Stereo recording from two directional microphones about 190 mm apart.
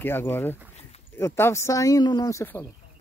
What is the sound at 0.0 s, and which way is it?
Speech, 10° left (ahead or behind).